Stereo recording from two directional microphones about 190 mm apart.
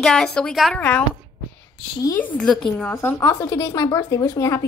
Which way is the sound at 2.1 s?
10° left (ahead or behind).